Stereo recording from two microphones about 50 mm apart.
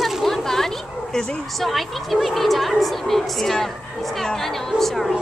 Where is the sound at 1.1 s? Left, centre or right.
Centre.